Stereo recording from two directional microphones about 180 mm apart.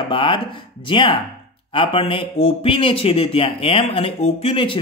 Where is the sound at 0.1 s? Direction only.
30° left (ahead or behind).